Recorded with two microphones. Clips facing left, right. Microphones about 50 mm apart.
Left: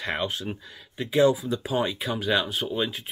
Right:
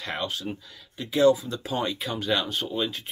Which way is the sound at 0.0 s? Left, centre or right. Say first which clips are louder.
Left 2 dB; centre.